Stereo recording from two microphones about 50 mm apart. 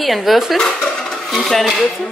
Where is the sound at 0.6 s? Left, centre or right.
Centre.